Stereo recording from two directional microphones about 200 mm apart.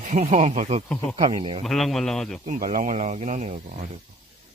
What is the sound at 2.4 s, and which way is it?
Speech, 40° right (ahead or behind).